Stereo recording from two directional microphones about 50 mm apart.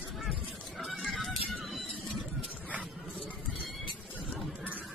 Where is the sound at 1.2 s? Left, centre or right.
Centre.